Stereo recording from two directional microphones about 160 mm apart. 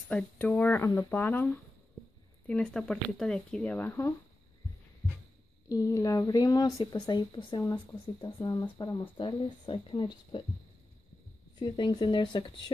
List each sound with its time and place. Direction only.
0.1 s speech: 10° left (ahead or behind)
5.7 s a woman's voice: 20° left (ahead or behind)
11.6 s a woman's voice: 30° left (ahead or behind)